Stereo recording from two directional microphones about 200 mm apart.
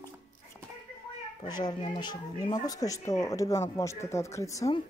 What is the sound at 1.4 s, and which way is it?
Speech, 20° left (ahead or behind).